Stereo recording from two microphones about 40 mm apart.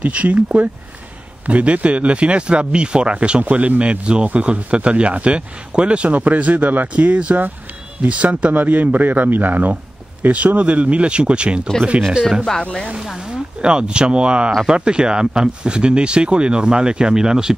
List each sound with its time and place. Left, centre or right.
0.0 s speech: right
6.9 s speech: right
8.5 s a man's voice: right
10.2 s speech: right
13.2 s speech: right